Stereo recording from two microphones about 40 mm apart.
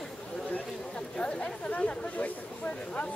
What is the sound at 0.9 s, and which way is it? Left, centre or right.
Chatter, left.